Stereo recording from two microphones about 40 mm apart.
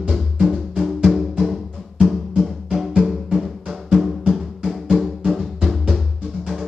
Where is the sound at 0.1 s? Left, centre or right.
Centre.